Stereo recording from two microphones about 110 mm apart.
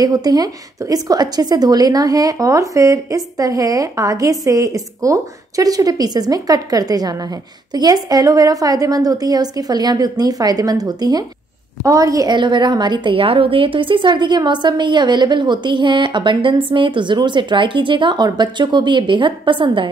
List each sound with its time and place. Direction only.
0.0 s a woman's voice: 35° right (ahead or behind)
12.4 s a woman's voice: 45° right (ahead or behind)